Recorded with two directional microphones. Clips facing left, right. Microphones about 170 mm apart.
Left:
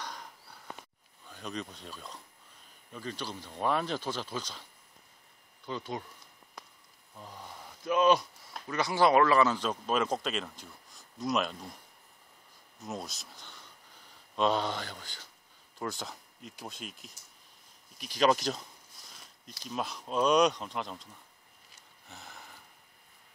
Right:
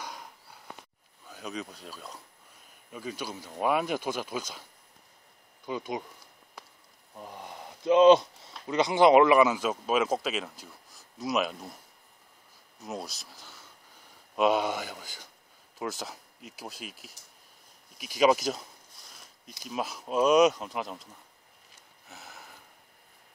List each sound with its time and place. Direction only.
1.3 s speech: 5° right (ahead or behind)
5.7 s speech: 10° right (ahead or behind)
7.2 s speech: 15° right (ahead or behind)
12.7 s speech: centre (ahead or behind)
22.0 s a sound: centre (ahead or behind)